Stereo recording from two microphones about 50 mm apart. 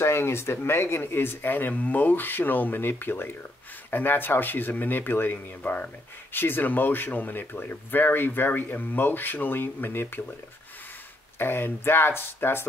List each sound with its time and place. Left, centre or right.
0.0 s speech: left
11.3 s speech: left